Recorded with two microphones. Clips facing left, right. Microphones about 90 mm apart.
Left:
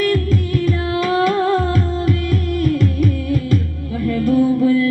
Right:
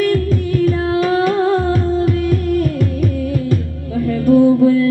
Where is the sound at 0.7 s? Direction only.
35° right (ahead or behind).